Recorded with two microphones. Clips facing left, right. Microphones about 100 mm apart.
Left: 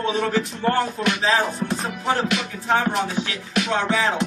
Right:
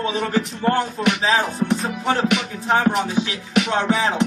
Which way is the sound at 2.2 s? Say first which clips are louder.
Right 3 dB; 10° right (ahead or behind).